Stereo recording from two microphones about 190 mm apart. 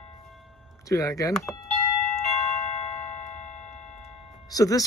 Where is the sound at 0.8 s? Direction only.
15° left (ahead or behind).